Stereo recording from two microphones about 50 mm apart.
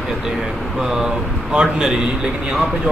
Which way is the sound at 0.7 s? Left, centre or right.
Centre.